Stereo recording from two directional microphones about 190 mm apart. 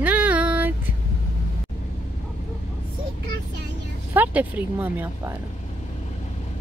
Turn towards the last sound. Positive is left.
turn(degrees=-10)  # may be behind; listen again after turning